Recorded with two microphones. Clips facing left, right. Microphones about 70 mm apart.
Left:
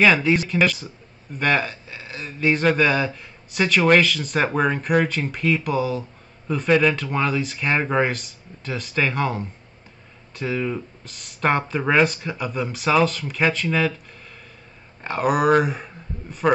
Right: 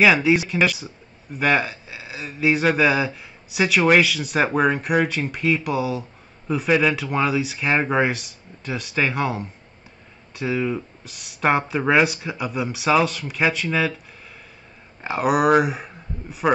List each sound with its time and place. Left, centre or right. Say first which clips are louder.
0.0 s speech: right 1 dB; centre
15.0 s speech: right 1 dB; centre